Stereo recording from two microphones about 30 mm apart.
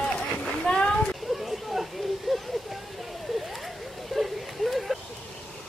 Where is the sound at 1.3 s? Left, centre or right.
Centre.